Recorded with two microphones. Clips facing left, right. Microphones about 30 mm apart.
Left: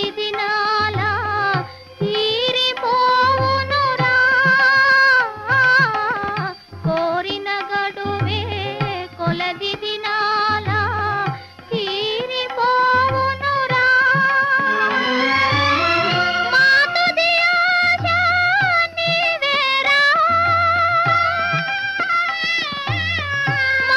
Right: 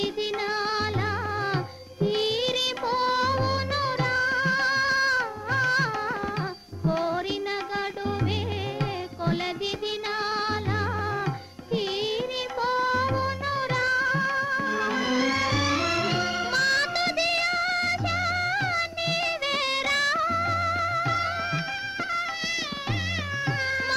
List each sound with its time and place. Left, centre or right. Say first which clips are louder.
0.0 s music: left 6 dB; left
10.1 s music: left 12 dB; left
12.5 s music: left 10 dB; left
23.4 s cat: left 10 dB; left